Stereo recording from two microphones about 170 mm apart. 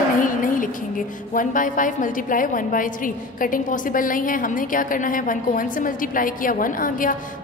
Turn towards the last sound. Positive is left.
turn(degrees=55)  # may be behind; listen again after turning